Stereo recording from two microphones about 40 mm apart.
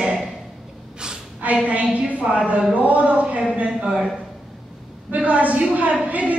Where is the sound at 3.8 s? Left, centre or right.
Right.